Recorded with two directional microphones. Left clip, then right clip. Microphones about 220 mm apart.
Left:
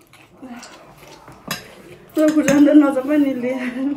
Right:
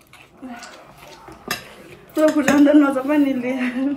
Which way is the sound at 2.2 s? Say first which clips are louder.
Left 1 dB; centre (ahead or behind).